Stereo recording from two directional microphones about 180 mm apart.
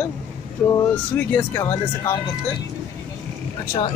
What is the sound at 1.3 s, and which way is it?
Speech, 15° left (ahead or behind).